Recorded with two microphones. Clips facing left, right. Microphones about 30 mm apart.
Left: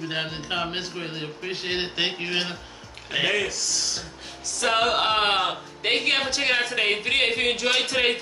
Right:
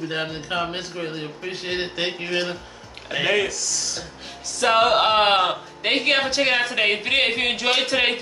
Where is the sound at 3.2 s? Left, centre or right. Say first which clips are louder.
Right 3 dB; centre.